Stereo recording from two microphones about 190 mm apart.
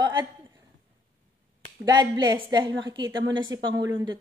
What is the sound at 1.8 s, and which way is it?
A woman's voice, 20° right (ahead or behind).